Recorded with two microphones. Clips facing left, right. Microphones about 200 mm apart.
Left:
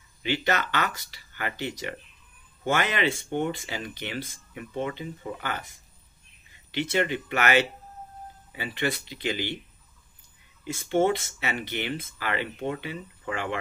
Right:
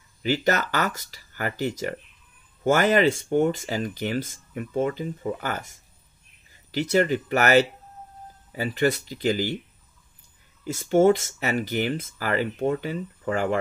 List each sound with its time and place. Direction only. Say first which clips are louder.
0.2 s speech: right 4 dB; 40° right (ahead or behind)
10.6 s speech: right 5 dB; 45° right (ahead or behind)